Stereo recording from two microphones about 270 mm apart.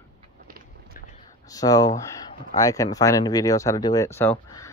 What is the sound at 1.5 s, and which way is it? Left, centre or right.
Speech, centre.